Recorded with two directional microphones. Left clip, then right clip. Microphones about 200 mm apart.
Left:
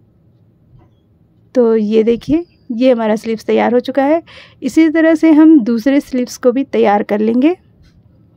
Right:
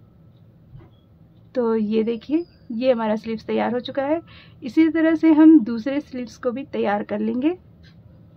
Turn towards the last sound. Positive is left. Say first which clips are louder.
# left 10 dB
turn(degrees=45)  # may be behind; listen again after turning